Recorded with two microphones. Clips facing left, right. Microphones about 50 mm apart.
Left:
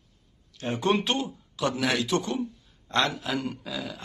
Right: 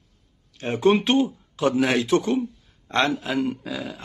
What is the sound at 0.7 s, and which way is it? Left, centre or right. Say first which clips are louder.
Speech: right 6 dB; right.